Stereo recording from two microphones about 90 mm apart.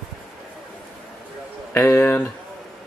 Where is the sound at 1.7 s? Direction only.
20° left (ahead or behind).